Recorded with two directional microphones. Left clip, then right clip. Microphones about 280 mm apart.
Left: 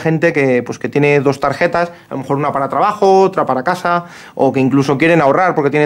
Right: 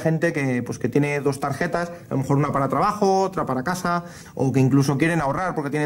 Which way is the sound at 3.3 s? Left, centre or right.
Centre.